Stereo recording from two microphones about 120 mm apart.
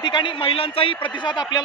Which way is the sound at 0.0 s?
40° left (ahead or behind).